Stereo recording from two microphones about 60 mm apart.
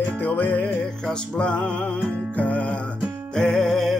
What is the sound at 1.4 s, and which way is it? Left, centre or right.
Music, centre.